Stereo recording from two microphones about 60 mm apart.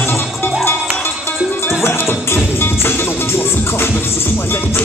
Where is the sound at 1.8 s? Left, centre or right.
Left.